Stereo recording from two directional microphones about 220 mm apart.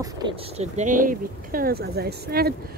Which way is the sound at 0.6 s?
35° right (ahead or behind).